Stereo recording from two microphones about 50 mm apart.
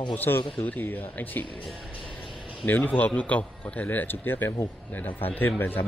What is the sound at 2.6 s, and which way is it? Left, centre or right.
A man's voice, left.